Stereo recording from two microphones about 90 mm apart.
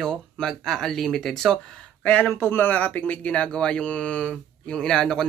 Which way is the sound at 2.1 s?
20° left (ahead or behind).